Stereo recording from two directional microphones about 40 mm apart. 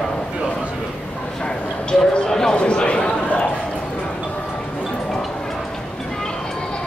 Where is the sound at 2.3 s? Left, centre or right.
Centre.